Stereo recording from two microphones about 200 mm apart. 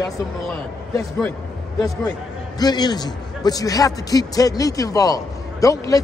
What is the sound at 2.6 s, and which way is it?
A man's voice, 20° left (ahead or behind).